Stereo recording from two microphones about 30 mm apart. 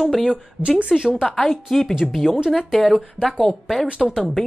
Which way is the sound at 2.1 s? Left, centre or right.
Centre.